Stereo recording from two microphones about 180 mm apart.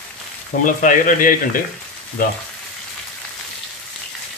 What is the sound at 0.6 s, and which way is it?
Speech, 50° left (ahead or behind).